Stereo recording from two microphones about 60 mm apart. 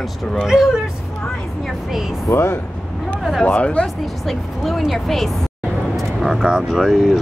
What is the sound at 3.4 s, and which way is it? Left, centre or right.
Speech, left.